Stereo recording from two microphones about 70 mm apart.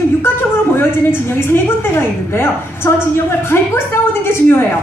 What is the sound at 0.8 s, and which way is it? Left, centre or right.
A woman's voice, left.